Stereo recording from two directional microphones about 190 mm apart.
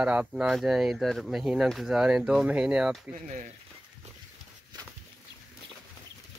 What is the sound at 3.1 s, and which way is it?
Speech, 40° right (ahead or behind).